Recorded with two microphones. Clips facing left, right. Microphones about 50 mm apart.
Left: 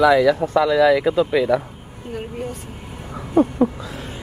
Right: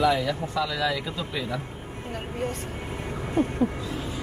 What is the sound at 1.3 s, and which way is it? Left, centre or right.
Speech, left.